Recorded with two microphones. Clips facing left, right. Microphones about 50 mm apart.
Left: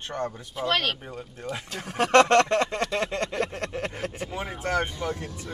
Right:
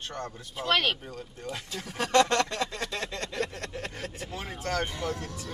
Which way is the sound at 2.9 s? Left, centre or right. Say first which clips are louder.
Left 7 dB; left.